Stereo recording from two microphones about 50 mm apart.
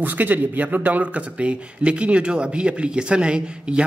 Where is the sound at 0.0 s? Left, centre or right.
Right.